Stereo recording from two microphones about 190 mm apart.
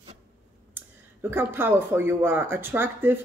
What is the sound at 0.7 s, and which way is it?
Speech, 10° right (ahead or behind).